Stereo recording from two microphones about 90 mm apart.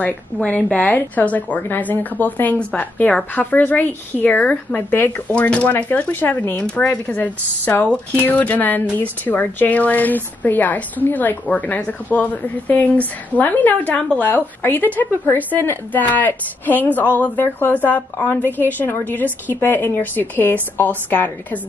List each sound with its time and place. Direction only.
0.0 s a woman's voice: 15° left (ahead or behind)